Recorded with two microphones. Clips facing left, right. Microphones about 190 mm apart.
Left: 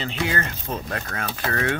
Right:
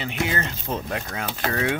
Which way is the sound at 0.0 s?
15° right (ahead or behind).